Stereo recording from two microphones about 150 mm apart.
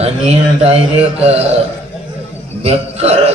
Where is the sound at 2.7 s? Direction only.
45° right (ahead or behind).